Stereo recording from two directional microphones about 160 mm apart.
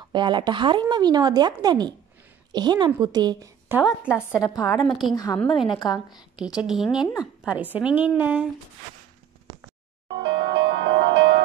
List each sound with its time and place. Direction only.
0.1 s speech: 30° right (ahead or behind)
3.6 s a woman's voice: 10° right (ahead or behind)
5.1 s speech: 25° left (ahead or behind)
6.3 s a woman's voice: 5° right (ahead or behind)
10.1 s music: 90° right